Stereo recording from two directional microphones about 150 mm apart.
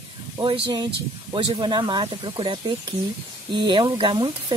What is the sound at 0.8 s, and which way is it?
Speech, 35° right (ahead or behind).